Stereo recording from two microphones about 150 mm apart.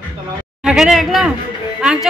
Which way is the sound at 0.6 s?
5° right (ahead or behind).